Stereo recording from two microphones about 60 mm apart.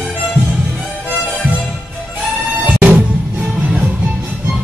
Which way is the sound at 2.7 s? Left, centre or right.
Centre.